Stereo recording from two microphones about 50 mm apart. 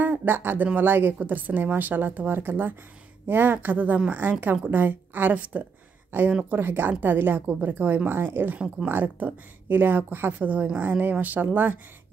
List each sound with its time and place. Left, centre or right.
0.0 s speech: right
6.5 s speech: right